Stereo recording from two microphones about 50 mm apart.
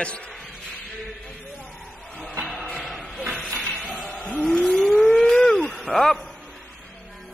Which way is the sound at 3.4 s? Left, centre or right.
Centre.